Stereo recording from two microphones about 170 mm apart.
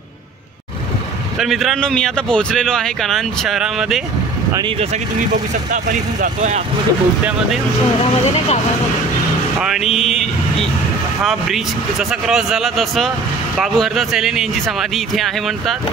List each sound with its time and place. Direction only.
1.4 s a man's voice: centre (ahead or behind)
4.6 s speech: 30° right (ahead or behind)
6.2 s speech: 45° right (ahead or behind)
9.6 s a sound: 5° right (ahead or behind)
9.9 s a man's voice: centre (ahead or behind)
11.2 s a man's voice: centre (ahead or behind)